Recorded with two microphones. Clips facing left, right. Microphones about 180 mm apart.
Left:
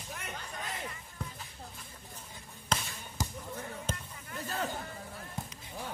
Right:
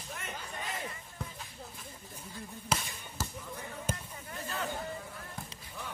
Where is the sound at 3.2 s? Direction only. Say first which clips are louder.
Left 2 dB; 15° left (ahead or behind).